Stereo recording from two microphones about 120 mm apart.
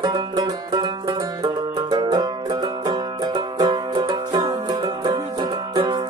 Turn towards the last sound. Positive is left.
turn(degrees=-40)  # may be behind; listen again after turning